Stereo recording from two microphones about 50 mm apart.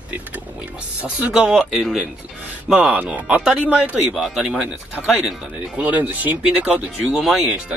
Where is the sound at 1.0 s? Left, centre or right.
Right.